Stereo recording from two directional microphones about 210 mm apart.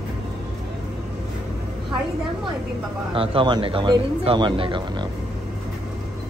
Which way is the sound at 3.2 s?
25° right (ahead or behind).